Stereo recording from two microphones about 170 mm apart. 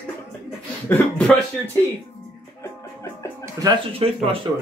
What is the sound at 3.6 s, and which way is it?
Speech, 20° right (ahead or behind).